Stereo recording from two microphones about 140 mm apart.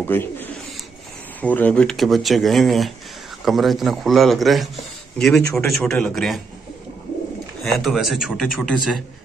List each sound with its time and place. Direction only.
0.0 s bird: 15° left (ahead or behind)
1.4 s speech: 10° left (ahead or behind)
7.6 s speech: centre (ahead or behind)